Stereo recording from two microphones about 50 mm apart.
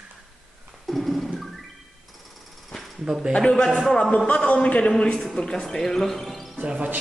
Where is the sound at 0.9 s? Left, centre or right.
Centre.